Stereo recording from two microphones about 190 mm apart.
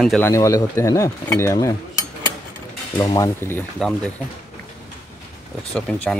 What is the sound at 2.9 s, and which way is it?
Mechanisms, 20° left (ahead or behind).